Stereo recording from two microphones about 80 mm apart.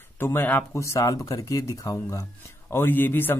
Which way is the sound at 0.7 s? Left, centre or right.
Left.